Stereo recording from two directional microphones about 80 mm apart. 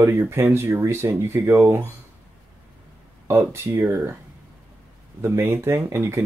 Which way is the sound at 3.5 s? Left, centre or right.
Right.